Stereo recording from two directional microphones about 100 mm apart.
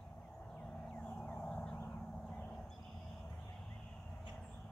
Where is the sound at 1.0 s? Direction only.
10° left (ahead or behind).